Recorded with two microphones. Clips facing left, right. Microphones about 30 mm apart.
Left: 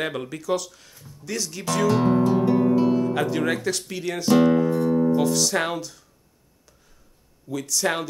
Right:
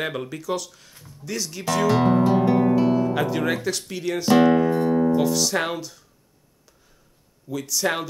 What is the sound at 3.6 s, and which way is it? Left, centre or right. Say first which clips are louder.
Speech: even; centre.